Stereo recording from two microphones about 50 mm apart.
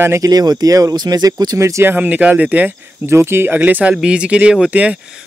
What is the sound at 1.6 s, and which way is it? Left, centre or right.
Speech, right.